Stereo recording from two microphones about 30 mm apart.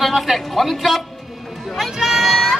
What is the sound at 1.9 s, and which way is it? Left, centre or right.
Speech, centre.